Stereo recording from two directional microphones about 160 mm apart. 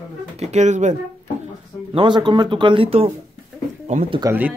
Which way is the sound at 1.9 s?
30° right (ahead or behind).